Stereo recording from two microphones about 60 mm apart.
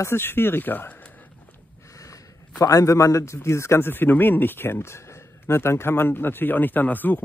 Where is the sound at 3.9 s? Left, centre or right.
Left.